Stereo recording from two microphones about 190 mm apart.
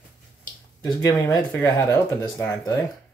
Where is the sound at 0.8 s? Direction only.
20° left (ahead or behind).